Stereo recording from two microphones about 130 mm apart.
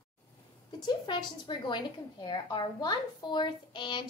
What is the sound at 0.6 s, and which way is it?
A woman's voice, 35° left (ahead or behind).